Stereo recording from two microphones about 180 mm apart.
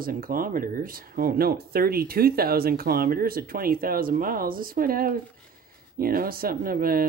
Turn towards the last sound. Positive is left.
turn(degrees=-55)  # may be behind; listen again after turning